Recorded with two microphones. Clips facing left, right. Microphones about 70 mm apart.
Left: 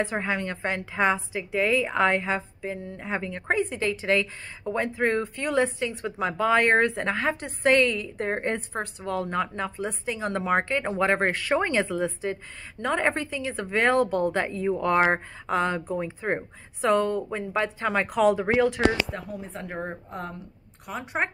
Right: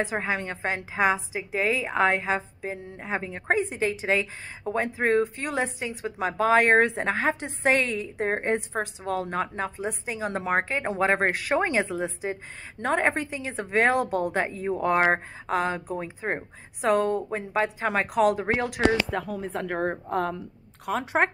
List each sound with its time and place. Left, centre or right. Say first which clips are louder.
0.0 s a woman's voice: even; centre
19.0 s speech: right 5 dB; right
20.1 s speech: right 9 dB; right
20.8 s a woman's voice: right 5 dB; right